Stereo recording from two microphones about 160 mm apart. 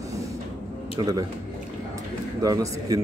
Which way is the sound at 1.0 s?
25° right (ahead or behind).